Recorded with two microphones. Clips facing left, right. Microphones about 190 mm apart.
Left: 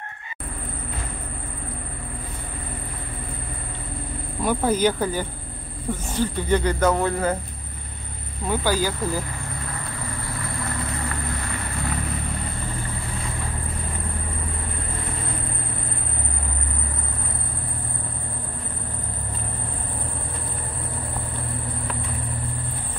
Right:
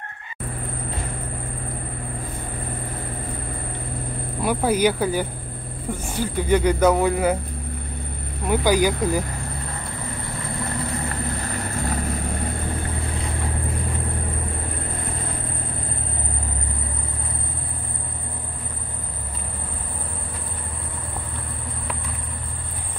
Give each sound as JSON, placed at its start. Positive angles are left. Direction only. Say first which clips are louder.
{"t": 4.4, "sound": "speech", "louder": "right 1 dB", "side_deg": -10}
{"t": 8.5, "sound": "speech", "louder": "right 4 dB", "side_deg": -15}
{"t": 11.4, "sound": "vehicle", "louder": "right 2 dB", "side_deg": -40}